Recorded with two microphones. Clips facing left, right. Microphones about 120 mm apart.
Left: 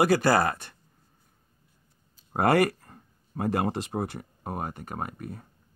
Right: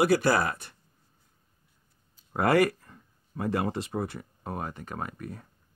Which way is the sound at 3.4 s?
60° left (ahead or behind).